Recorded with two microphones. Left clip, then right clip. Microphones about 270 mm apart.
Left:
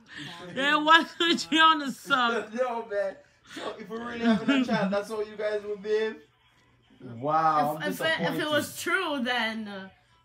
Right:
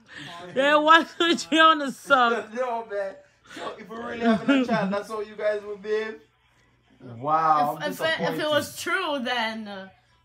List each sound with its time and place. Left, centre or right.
0.0 s a man's voice: centre
2.3 s a man's voice: centre
3.4 s a man's voice: centre
4.6 s a man's voice: centre
7.2 s a man's voice: centre
7.5 s a man's voice: centre